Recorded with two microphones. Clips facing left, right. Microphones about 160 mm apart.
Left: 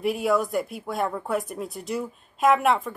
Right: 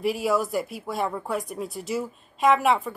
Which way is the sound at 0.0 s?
Centre (ahead or behind).